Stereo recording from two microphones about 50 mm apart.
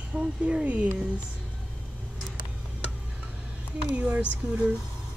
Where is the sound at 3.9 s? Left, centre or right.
Right.